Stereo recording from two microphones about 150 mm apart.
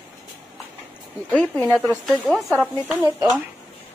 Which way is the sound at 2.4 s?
10° left (ahead or behind).